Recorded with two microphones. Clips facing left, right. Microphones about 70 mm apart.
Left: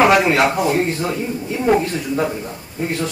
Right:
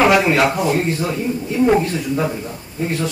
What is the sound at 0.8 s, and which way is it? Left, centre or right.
A man's voice, left.